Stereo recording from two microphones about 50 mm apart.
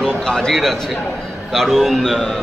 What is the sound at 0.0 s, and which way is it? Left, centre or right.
A man's voice, centre.